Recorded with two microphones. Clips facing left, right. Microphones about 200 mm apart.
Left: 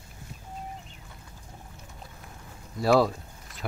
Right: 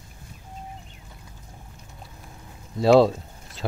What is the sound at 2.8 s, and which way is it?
Speech, 25° right (ahead or behind).